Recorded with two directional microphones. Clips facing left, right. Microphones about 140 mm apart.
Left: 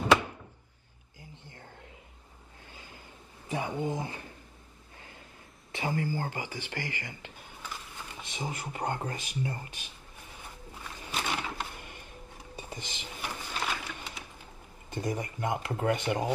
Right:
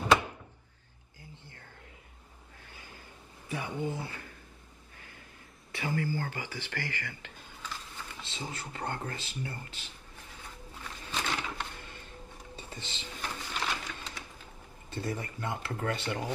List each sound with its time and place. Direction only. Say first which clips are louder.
1.3 s a sound: left 2 dB; 15° left (ahead or behind)
3.4 s speech: left 3 dB; 20° left (ahead or behind)
5.7 s speech: left 1 dB; 20° left (ahead or behind)
10.8 s music: left 1 dB; 10° left (ahead or behind)
14.9 s speech: left 3 dB; 15° left (ahead or behind)